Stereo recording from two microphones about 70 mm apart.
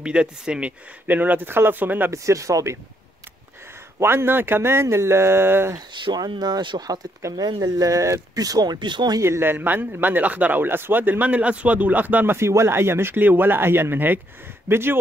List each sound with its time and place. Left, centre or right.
0.0 s speech: centre
2.1 s speech: right
4.0 s speech: right
5.9 s speech: right
7.3 s speech: right
9.2 s speech: right
12.4 s speech: right